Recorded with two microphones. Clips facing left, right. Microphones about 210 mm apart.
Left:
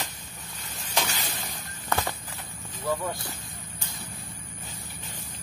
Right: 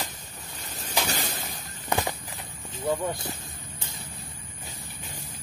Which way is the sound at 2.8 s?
25° right (ahead or behind).